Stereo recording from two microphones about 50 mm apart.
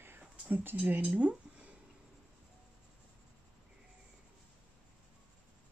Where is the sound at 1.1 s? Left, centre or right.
Right.